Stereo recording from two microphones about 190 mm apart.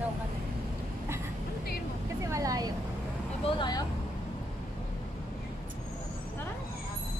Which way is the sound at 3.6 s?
20° left (ahead or behind).